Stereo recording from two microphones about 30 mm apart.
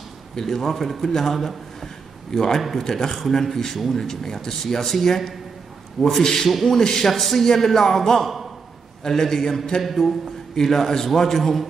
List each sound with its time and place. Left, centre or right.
0.4 s speech: centre
7.1 s speech: centre
9.8 s speech: centre